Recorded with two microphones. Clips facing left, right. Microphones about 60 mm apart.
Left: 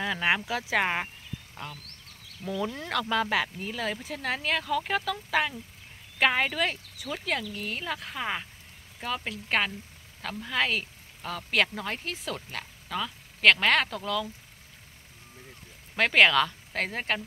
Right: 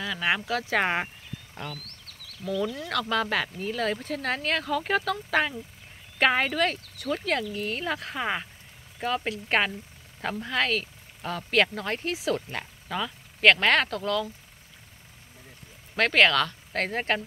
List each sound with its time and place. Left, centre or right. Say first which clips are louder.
0.0 s speech: left 1 dB; centre
0.7 s speech: right 1 dB; centre
2.4 s speech: right 3 dB; centre
10.4 s speech: even; centre
12.4 s speech: right 3 dB; centre
12.9 s speech: right 2 dB; centre
16.0 s speech: even; centre